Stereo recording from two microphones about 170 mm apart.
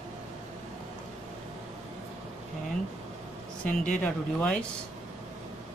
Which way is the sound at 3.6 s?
5° left (ahead or behind).